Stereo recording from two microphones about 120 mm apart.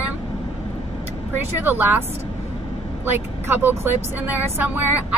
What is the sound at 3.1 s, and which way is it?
Speech, 15° right (ahead or behind).